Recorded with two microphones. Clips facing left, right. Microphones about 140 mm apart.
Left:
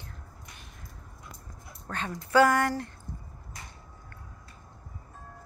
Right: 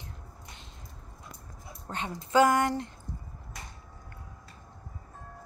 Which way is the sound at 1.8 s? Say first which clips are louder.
Left 1 dB; 20° right (ahead or behind).